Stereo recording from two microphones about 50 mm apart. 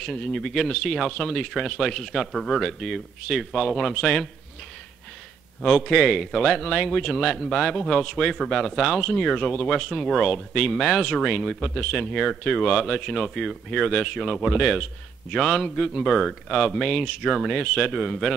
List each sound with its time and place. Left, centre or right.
0.0 s speech: centre
5.6 s speech: centre
14.6 s speech: centre